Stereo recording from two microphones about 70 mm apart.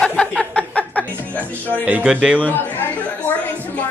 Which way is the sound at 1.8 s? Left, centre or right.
Right.